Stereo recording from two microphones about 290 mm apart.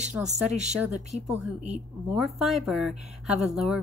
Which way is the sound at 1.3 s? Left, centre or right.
Right.